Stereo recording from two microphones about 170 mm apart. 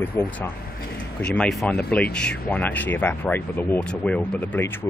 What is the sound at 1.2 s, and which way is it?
Speech, 5° left (ahead or behind).